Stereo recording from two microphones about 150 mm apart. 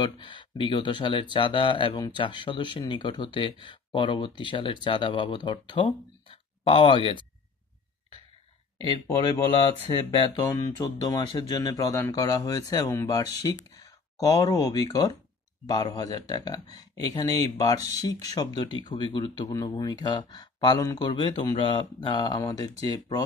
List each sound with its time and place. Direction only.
0.0 s speech: 30° left (ahead or behind)
8.9 s speech: 30° left (ahead or behind)